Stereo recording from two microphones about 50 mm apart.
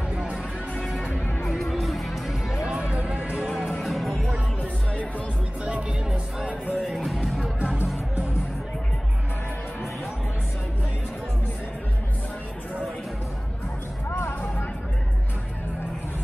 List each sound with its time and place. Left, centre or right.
1.4 s music: centre
2.6 s music: centre
3.8 s music: centre
5.7 s music: right
6.9 s music: centre
7.5 s music: right
14.1 s music: left